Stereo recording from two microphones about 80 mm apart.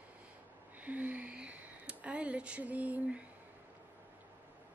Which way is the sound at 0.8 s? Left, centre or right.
Centre.